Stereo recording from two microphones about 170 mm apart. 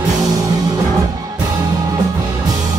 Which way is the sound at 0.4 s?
20° right (ahead or behind).